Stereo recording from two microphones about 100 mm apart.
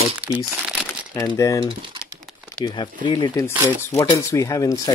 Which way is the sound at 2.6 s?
45° left (ahead or behind).